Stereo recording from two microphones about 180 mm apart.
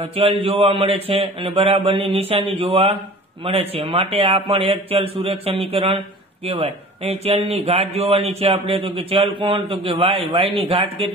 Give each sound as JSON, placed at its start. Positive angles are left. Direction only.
{"t": 0.0, "sound": "speech", "side_deg": -30}